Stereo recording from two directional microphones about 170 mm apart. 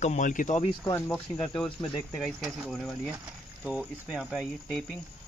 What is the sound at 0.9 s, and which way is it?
Speech, 5° left (ahead or behind).